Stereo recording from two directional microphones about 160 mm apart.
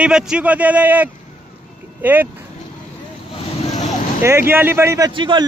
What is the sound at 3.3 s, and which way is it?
Vehicle, 45° left (ahead or behind).